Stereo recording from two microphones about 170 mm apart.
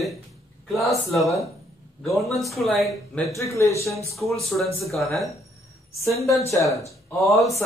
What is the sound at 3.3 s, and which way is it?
Speech, 20° left (ahead or behind).